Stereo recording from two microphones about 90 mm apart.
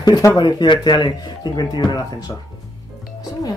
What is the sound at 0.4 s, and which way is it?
Speech, 50° left (ahead or behind).